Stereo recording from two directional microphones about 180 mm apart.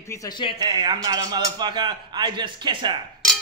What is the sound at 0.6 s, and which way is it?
A man's voice, 25° right (ahead or behind).